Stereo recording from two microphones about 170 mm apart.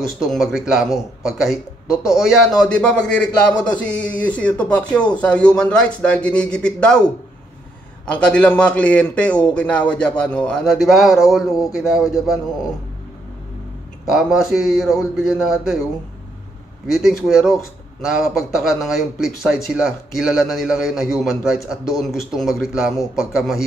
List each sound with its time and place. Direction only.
0.2 s a man's voice: 5° right (ahead or behind)
14.0 s a man's voice: centre (ahead or behind)
16.9 s a man's voice: 5° right (ahead or behind)